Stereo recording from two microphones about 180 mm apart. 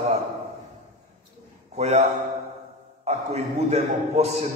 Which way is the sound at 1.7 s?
35° right (ahead or behind).